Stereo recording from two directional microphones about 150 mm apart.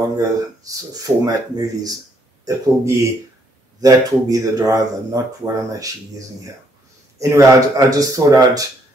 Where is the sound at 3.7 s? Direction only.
25° right (ahead or behind).